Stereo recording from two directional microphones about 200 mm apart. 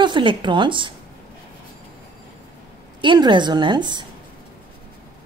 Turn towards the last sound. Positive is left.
turn(degrees=-20)  # may be behind; listen again after turning